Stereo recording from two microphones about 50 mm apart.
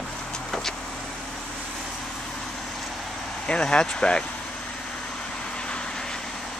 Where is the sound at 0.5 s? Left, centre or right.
Centre.